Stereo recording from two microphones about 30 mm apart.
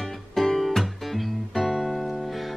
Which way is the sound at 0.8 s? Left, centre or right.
Centre.